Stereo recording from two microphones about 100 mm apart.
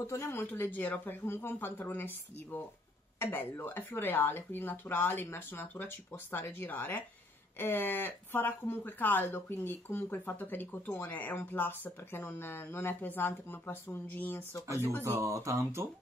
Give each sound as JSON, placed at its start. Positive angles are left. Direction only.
{"t": 0.0, "sound": "speech", "side_deg": 30}
{"t": 0.4, "sound": "speech", "side_deg": 20}
{"t": 15.0, "sound": "speech", "side_deg": -30}